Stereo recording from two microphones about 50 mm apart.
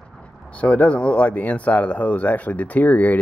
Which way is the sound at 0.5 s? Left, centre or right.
Left.